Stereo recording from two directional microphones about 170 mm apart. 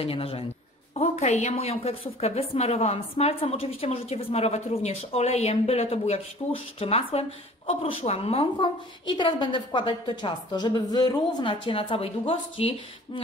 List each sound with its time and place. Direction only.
0.0 s a woman's voice: 35° left (ahead or behind)